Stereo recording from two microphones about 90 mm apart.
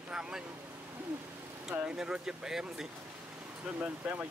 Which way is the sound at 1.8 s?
10° right (ahead or behind).